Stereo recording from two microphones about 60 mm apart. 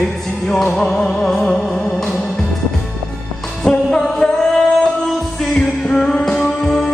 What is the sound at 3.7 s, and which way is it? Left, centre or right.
Music, centre.